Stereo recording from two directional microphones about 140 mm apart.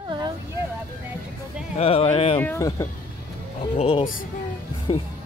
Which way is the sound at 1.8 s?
40° left (ahead or behind).